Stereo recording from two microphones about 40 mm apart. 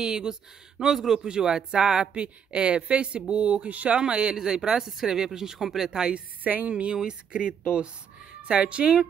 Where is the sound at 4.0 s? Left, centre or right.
Right.